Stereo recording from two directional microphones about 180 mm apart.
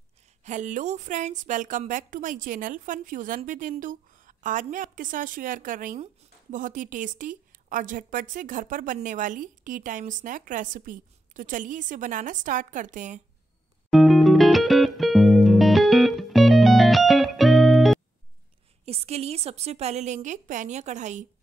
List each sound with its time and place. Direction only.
0.4 s a woman's voice: 40° right (ahead or behind)
13.8 s music: centre (ahead or behind)
18.9 s a woman's voice: 35° right (ahead or behind)